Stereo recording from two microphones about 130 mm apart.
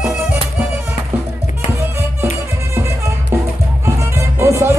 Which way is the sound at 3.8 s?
20° right (ahead or behind).